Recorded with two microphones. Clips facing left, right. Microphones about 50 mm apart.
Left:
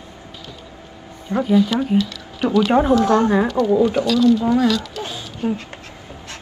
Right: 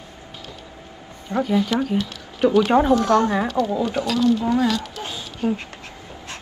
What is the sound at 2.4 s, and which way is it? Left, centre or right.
Speech, right.